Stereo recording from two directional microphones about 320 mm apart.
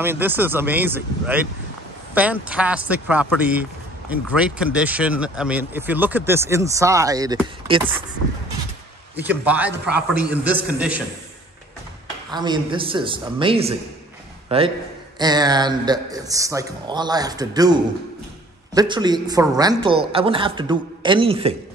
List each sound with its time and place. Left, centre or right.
0.0 s a man's voice: centre
9.1 s speech: centre
12.3 s a man's voice: centre
18.8 s a man's voice: centre